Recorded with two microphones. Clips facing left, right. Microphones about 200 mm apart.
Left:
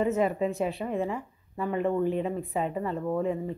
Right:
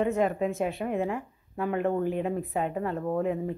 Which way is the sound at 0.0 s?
Centre (ahead or behind).